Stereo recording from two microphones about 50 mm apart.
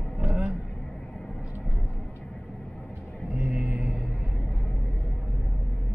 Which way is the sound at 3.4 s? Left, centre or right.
Right.